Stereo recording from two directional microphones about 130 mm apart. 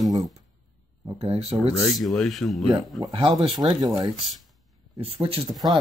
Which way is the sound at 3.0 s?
40° right (ahead or behind).